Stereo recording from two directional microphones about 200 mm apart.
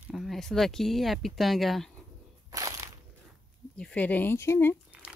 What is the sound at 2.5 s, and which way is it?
Crunch, 15° right (ahead or behind).